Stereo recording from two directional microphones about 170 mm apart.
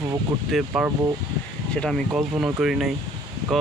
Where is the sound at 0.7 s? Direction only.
5° right (ahead or behind).